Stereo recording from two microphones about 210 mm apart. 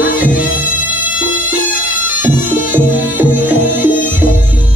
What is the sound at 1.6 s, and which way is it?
Bagpipes, 40° left (ahead or behind).